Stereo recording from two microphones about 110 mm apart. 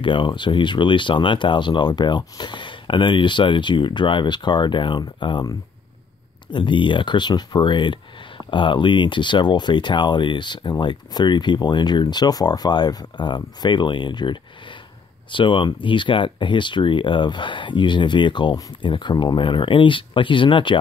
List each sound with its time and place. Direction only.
0.0 s speech: 50° left (ahead or behind)
6.5 s speech: 45° left (ahead or behind)